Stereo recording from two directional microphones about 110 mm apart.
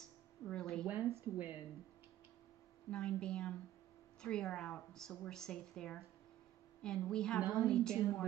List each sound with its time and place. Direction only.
0.5 s a sound: 5° left (ahead or behind)
0.8 s speech: 15° right (ahead or behind)
2.9 s speech: 10° left (ahead or behind)